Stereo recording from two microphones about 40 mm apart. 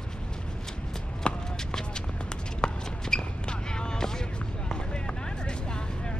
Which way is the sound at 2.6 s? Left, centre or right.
Centre.